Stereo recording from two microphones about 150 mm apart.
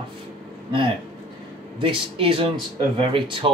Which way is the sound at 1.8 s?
35° right (ahead or behind).